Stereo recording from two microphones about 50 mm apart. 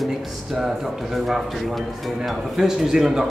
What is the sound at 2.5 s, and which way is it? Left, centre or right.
Speech, centre.